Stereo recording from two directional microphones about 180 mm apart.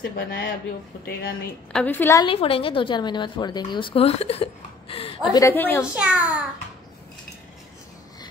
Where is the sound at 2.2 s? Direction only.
30° left (ahead or behind).